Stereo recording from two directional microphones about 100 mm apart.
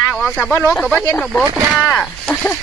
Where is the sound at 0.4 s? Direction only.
20° left (ahead or behind).